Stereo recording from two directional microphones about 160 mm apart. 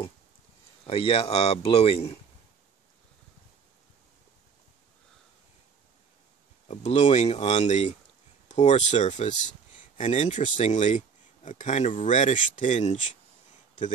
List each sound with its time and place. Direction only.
0.8 s speech: 35° left (ahead or behind)
6.7 s speech: 45° left (ahead or behind)